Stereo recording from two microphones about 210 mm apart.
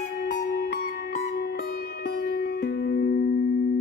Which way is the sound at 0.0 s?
50° left (ahead or behind).